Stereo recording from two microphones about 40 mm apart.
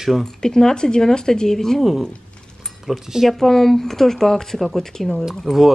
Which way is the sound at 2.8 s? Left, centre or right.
Centre.